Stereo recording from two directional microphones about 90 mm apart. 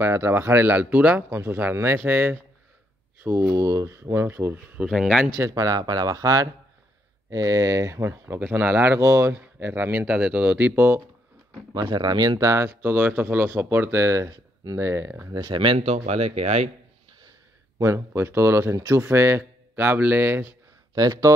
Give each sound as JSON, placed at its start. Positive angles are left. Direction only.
{"t": 0.0, "sound": "speech", "side_deg": -25}
{"t": 3.5, "sound": "speech", "side_deg": -35}
{"t": 4.7, "sound": "speech", "side_deg": -5}
{"t": 5.2, "sound": "speech", "side_deg": -30}
{"t": 8.4, "sound": "speech", "side_deg": -20}
{"t": 11.7, "sound": "speech", "side_deg": -55}
{"t": 12.4, "sound": "speech", "side_deg": -30}
{"t": 14.8, "sound": "speech", "side_deg": -25}
{"t": 15.3, "sound": "speech", "side_deg": -60}
{"t": 17.7, "sound": "speech", "side_deg": -35}
{"t": 20.9, "sound": "speech", "side_deg": -45}